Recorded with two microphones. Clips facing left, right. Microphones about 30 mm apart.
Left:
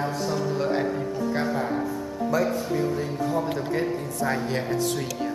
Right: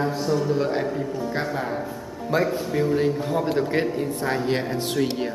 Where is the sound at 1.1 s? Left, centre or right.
Centre.